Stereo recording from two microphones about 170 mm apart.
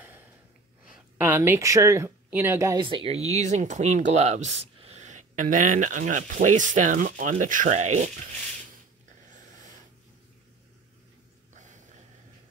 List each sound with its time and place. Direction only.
1.1 s speech: 15° right (ahead or behind); by 8.3 s 45° right (ahead or behind)